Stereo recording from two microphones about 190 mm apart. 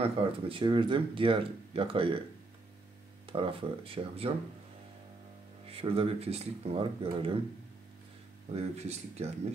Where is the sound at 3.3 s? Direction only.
30° right (ahead or behind).